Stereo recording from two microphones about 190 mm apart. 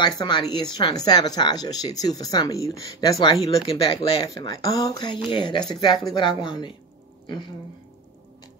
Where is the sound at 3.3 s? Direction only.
30° left (ahead or behind).